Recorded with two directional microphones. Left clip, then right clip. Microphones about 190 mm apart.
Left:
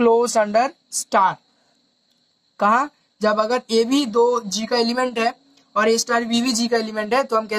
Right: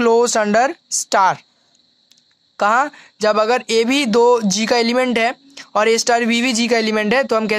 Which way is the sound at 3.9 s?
40° right (ahead or behind).